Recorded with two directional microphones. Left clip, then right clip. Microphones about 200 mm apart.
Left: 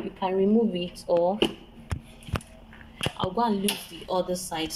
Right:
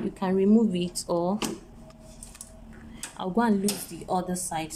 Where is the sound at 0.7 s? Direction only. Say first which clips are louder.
Left 4 dB; 10° right (ahead or behind).